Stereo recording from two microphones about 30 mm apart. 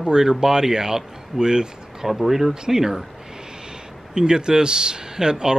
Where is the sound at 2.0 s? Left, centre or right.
Centre.